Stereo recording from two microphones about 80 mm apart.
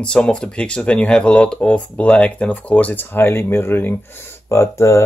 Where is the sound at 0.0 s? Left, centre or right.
Centre; by 4.0 s left.